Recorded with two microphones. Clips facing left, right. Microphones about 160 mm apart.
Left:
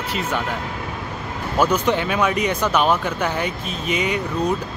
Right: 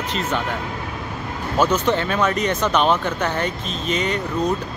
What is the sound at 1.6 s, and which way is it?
Speech, 10° left (ahead or behind).